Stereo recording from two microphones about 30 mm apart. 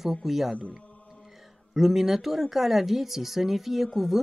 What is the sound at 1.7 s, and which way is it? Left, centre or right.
Speech, centre.